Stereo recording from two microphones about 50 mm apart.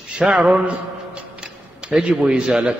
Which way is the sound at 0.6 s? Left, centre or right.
Right.